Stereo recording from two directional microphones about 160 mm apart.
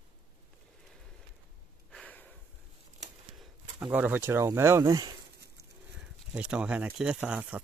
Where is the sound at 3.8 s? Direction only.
10° right (ahead or behind).